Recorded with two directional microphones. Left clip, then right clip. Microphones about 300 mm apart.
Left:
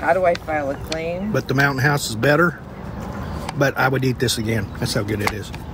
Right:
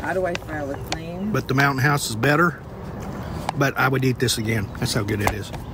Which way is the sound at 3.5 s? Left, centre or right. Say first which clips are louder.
Left 3 dB; centre.